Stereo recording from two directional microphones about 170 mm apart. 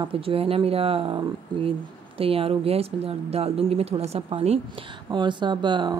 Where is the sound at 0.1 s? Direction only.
35° right (ahead or behind).